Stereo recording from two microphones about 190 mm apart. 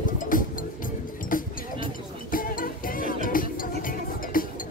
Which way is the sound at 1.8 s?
45° left (ahead or behind).